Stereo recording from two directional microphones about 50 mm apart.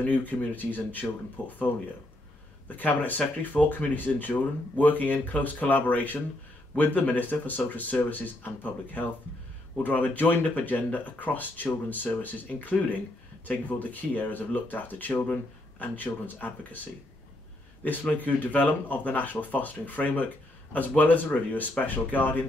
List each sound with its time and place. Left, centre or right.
0.0 s speech: left
2.7 s speech: left
18.1 s speech: left